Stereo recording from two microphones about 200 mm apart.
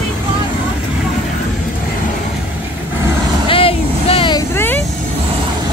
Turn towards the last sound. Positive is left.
turn(degrees=10)  # may be behind; listen again after turning